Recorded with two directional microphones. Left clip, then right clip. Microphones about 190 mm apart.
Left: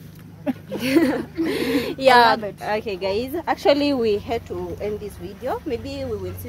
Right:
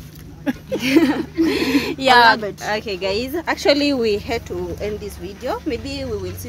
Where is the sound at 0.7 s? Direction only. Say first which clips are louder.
Right 3 dB; 30° left (ahead or behind).